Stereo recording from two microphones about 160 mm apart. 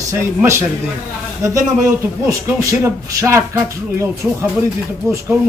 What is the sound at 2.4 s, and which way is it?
Speech, 15° right (ahead or behind).